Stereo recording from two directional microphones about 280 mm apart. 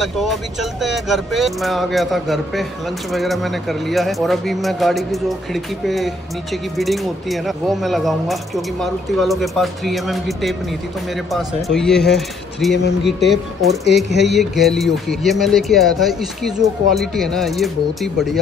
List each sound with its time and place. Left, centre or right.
0.0 s speech: centre